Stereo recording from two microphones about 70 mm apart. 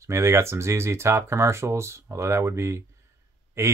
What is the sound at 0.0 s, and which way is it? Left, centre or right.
Speech, right.